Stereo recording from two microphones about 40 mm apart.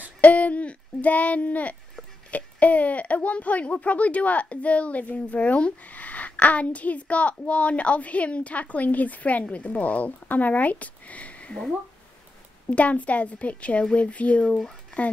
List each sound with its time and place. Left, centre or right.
0.2 s owl: left
2.3 s a child's voice: left
12.6 s a child's voice: left